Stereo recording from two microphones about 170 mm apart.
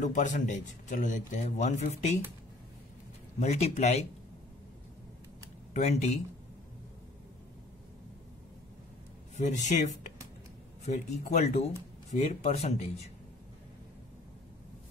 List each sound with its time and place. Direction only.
0.0 s a man's voice: 45° left (ahead or behind)
3.3 s speech: 40° left (ahead or behind)
5.7 s speech: 40° left (ahead or behind)
9.4 s a man's voice: 45° left (ahead or behind)
11.3 s speech: 40° left (ahead or behind)